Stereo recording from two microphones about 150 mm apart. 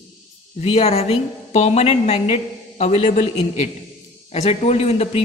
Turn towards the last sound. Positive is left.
turn(degrees=45)  # may be behind; listen again after turning